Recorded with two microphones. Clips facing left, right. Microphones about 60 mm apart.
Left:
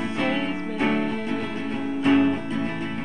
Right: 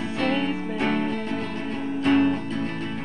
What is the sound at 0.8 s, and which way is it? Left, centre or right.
Music, centre.